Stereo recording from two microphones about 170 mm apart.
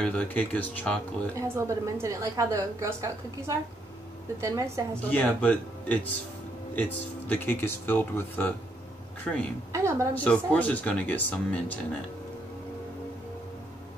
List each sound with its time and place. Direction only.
0.0 s speech: 5° left (ahead or behind)
1.3 s a woman's voice: 15° right (ahead or behind)
5.1 s speech: 10° left (ahead or behind)
9.7 s a woman's voice: 15° right (ahead or behind)
10.1 s speech: 5° left (ahead or behind)